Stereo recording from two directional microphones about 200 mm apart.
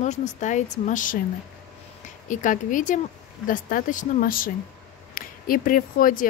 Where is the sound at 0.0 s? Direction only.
35° left (ahead or behind).